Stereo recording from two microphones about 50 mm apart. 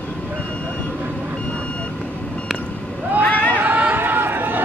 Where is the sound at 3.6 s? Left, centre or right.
Right.